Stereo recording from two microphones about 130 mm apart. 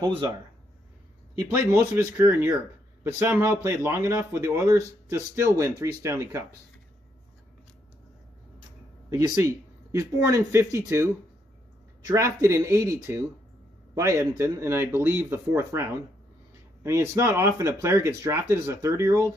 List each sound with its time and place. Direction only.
0.0 s speech: 40° right (ahead or behind)
1.7 s speech: 20° right (ahead or behind)
9.1 s speech: 25° right (ahead or behind)
12.1 s speech: 25° right (ahead or behind)